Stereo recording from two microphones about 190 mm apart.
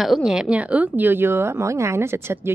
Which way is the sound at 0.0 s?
Centre (ahead or behind).